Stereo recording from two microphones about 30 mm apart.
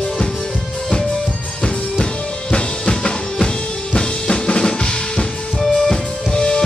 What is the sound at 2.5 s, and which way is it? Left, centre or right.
Drum, left.